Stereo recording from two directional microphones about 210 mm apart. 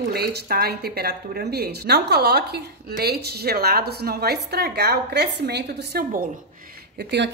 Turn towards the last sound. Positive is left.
turn(degrees=-50)  # may be behind; listen again after turning